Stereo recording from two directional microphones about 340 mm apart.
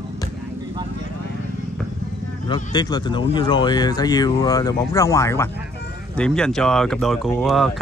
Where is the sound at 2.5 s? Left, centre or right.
Centre.